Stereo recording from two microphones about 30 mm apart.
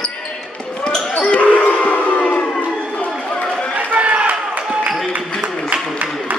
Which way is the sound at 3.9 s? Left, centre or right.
Right.